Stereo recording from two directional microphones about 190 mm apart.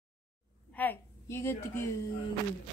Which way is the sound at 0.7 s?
10° left (ahead or behind).